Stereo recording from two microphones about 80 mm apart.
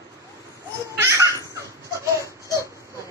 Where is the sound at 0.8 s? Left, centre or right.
Right.